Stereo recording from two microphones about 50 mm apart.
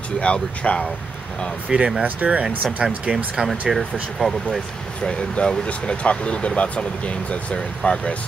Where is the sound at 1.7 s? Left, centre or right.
Centre.